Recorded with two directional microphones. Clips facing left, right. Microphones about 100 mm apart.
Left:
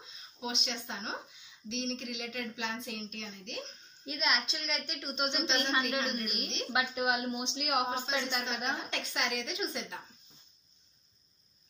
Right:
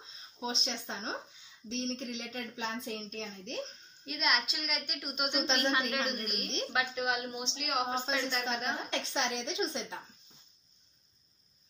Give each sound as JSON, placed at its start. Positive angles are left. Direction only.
{"t": 0.0, "sound": "a woman's voice", "side_deg": -35}
{"t": 4.0, "sound": "a woman's voice", "side_deg": 0}
{"t": 6.7, "sound": "a woman's voice", "side_deg": 15}
{"t": 8.9, "sound": "a woman's voice", "side_deg": -30}